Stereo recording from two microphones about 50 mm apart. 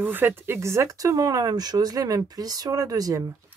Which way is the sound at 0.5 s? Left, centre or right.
Right.